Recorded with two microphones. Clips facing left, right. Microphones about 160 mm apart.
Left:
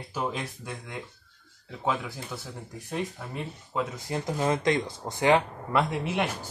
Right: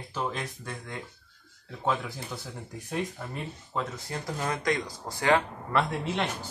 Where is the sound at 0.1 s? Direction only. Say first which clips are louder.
Left 1 dB; 5° left (ahead or behind).